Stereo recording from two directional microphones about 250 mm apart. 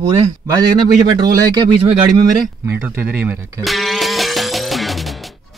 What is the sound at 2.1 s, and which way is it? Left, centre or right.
Speech, centre.